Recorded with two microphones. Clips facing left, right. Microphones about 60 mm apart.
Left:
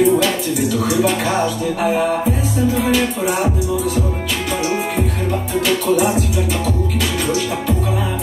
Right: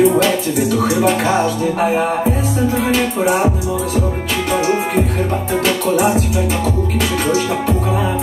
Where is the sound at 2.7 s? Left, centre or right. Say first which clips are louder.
Right 1 dB; right.